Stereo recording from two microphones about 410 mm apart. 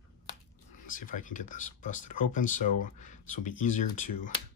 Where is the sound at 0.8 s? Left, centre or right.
Centre.